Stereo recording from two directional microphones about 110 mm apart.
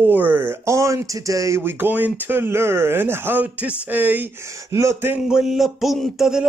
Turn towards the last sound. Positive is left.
turn(degrees=-5)  # may be behind; listen again after turning